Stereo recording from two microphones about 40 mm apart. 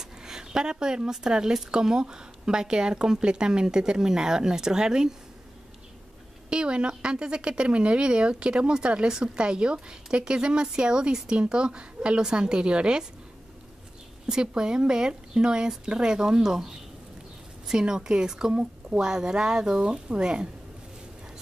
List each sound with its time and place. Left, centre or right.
0.0 s speech: centre
6.5 s speech: right
14.2 s speech: centre
18.5 s a woman's voice: right
18.9 s speech: centre